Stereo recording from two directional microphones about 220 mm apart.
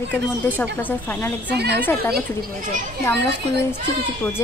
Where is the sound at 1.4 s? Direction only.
50° right (ahead or behind).